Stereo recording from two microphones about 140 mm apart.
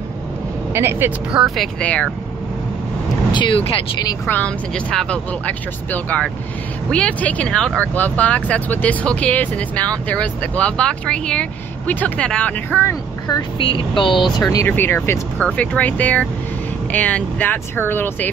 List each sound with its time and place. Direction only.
0.7 s speech: 15° right (ahead or behind)
1.4 s speech: 5° left (ahead or behind)
3.3 s speech: 35° left (ahead or behind)
4.3 s speech: 10° left (ahead or behind)
13.3 s speech: 35° left (ahead or behind)
14.7 s speech: 15° left (ahead or behind)